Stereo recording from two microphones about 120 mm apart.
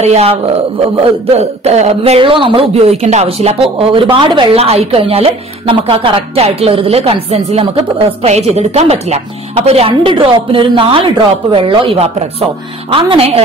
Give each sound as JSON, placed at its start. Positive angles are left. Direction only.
{"t": 0.0, "sound": "speech", "side_deg": -60}
{"t": 3.6, "sound": "speech", "side_deg": -45}
{"t": 4.6, "sound": "speech", "side_deg": -55}